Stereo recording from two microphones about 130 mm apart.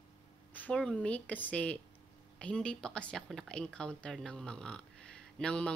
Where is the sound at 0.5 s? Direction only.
10° left (ahead or behind).